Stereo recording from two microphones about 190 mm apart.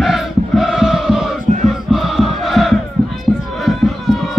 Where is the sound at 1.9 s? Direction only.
Centre (ahead or behind).